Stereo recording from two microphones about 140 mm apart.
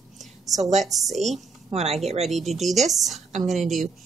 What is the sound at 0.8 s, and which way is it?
Speech, centre (ahead or behind).